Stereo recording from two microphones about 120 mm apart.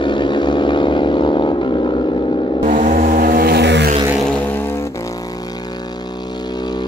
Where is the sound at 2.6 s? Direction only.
90° right.